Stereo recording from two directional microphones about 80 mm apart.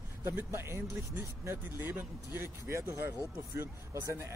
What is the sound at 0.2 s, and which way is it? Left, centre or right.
Speech, right.